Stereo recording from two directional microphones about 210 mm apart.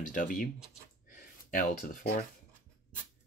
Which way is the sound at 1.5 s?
40° left (ahead or behind).